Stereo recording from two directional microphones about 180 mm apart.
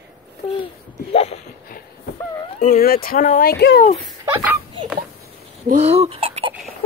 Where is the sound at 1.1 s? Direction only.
35° left (ahead or behind).